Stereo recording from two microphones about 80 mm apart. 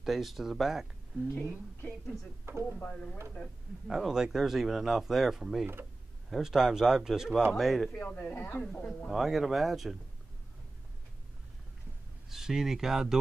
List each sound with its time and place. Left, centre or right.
0.0 s speech: centre
1.3 s speech: left
2.5 s speech: right
2.8 s speech: centre
3.8 s speech: centre
8.0 s speech: centre
8.4 s speech: left
8.6 s speech: centre
12.3 s speech: centre